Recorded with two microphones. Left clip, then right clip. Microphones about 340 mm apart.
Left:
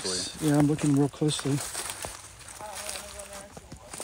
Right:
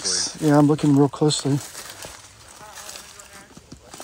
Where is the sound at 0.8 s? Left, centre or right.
Right.